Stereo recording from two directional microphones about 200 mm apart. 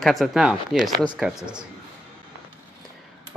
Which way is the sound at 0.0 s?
Centre (ahead or behind).